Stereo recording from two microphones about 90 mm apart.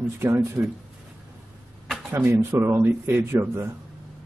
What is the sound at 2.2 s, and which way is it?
Speech, 30° right (ahead or behind).